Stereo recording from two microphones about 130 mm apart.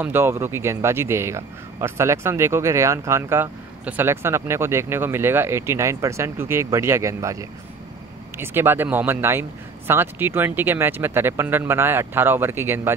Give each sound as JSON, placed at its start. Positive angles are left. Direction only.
{"t": 0.0, "sound": "speech", "side_deg": -20}